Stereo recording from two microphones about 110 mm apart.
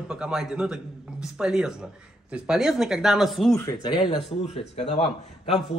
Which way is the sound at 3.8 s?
45° left (ahead or behind).